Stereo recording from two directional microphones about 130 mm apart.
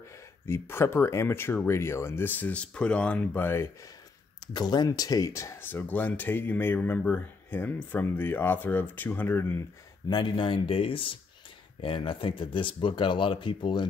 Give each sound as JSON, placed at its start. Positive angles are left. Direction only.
{"t": 0.5, "sound": "speech", "side_deg": 20}
{"t": 4.6, "sound": "speech", "side_deg": 35}
{"t": 10.0, "sound": "speech", "side_deg": 35}